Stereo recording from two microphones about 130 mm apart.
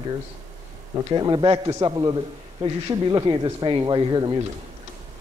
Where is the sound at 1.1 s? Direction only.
35° right (ahead or behind).